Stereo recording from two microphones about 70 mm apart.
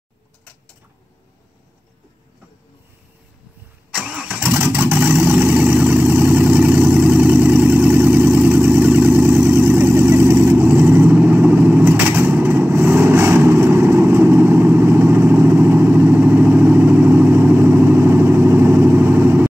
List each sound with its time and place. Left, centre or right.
3.9 s vehicle: centre